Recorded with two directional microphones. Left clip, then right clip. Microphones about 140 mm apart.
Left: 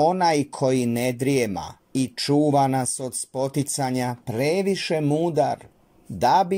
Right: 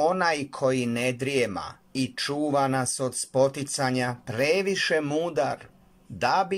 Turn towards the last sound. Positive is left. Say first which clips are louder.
# left 5 dB
turn(degrees=45)  # may be behind; listen again after turning